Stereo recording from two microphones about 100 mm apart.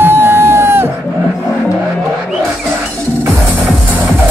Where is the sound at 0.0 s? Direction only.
25° right (ahead or behind).